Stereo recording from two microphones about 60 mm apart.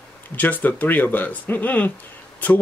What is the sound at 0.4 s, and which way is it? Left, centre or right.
Speech, left.